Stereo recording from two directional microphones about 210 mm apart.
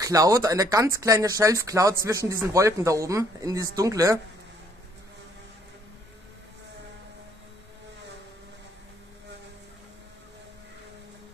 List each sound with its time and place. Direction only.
0.0 s speech: 15° right (ahead or behind)